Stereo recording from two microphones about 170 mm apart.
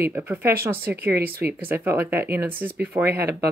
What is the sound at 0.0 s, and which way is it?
Speech, 10° right (ahead or behind).